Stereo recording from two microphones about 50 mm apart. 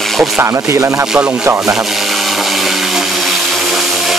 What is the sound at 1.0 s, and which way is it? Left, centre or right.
Speech, centre.